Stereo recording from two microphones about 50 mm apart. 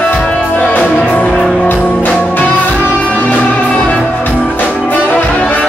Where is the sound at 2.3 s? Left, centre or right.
Left.